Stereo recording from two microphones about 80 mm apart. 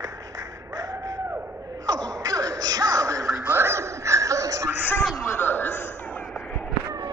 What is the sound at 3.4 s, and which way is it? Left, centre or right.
Music, right.